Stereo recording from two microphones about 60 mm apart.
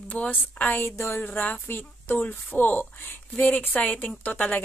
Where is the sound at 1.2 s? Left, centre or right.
Left.